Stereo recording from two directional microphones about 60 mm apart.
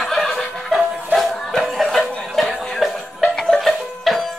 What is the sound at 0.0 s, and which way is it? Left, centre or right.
Chuckle, centre.